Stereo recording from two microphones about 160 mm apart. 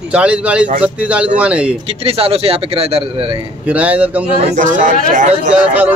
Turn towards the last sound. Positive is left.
turn(degrees=-10)  # may be behind; listen again after turning